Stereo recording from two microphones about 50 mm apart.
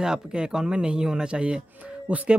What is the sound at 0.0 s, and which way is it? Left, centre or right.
Speech, centre.